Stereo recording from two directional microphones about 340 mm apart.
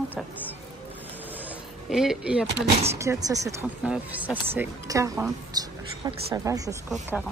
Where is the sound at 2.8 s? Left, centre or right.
Centre.